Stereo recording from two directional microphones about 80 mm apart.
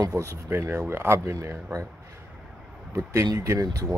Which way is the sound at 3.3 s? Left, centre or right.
Right.